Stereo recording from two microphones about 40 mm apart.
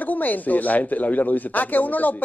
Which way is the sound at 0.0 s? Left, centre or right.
Left.